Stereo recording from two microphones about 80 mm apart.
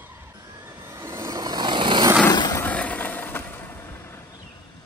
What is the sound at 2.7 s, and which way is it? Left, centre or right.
Vehicle, centre.